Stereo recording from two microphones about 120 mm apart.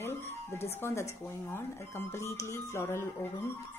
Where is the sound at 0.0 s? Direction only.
20° left (ahead or behind).